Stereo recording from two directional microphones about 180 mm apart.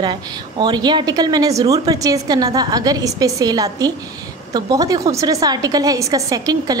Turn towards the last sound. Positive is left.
turn(degrees=-20)  # may be behind; listen again after turning